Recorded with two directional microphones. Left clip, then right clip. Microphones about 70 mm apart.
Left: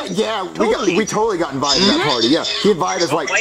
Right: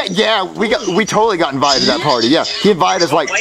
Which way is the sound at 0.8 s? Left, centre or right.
Right.